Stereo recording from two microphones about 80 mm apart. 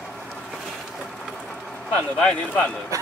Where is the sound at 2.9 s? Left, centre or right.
Right.